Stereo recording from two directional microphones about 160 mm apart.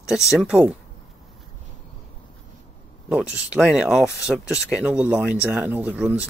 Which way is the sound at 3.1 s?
5° right (ahead or behind).